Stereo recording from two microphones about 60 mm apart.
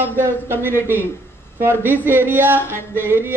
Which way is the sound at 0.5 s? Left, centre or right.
Left.